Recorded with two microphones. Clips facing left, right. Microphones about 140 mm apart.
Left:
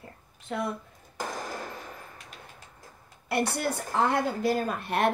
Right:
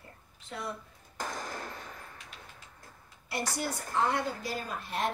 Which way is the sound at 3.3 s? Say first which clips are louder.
Left 6 dB; 60° left (ahead or behind).